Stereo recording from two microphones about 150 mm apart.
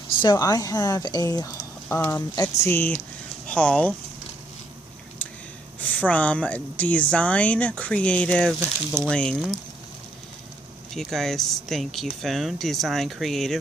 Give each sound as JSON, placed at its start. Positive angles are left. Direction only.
{"t": 0.2, "sound": "a woman's voice", "side_deg": 25}
{"t": 5.8, "sound": "a woman's voice", "side_deg": 10}
{"t": 11.0, "sound": "speech", "side_deg": 0}